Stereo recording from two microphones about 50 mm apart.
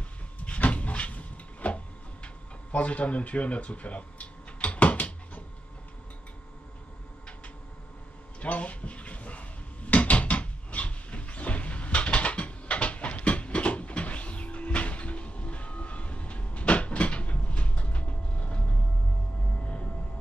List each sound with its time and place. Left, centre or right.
0.4 s cupboard open or close: left
2.2 s a sound: left
8.4 s dishes: left